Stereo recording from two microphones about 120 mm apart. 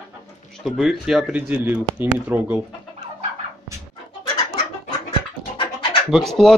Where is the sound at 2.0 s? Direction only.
15° right (ahead or behind).